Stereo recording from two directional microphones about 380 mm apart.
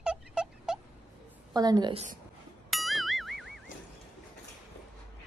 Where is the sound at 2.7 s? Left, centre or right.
Centre.